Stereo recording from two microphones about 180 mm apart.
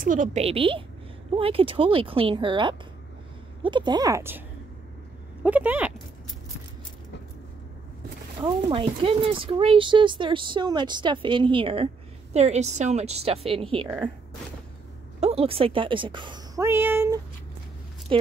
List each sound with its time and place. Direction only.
0.0 s a woman's voice: 45° right (ahead or behind); by 4.4 s 15° right (ahead or behind)
5.4 s speech: 10° right (ahead or behind)
8.6 s a woman's voice: 30° right (ahead or behind)
15.1 s a woman's voice: 35° right (ahead or behind)
16.6 s speech: 10° right (ahead or behind)
18.1 s a woman's voice: 30° right (ahead or behind)